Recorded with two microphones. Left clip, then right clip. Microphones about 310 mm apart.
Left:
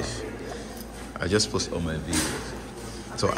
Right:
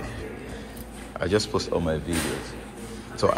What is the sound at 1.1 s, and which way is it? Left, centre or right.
Speech, centre.